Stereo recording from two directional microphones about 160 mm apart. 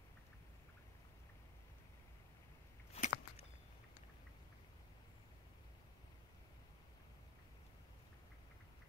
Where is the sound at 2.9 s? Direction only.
40° left (ahead or behind).